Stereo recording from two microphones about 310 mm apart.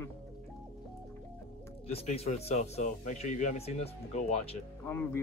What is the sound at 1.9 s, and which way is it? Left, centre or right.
Speech, centre.